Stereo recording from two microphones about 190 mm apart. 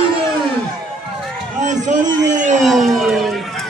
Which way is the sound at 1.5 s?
40° right (ahead or behind).